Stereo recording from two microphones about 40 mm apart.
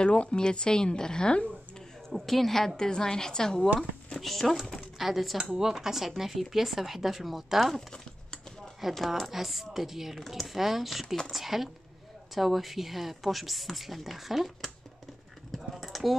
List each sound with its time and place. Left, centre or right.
0.0 s a woman's voice: left
2.0 s a woman's voice: centre
5.4 s speech: centre
7.7 s a sound: centre
8.9 s a woman's voice: centre
9.3 s speech: centre
10.2 s speech: centre
10.5 s speech: centre
15.5 s typing: centre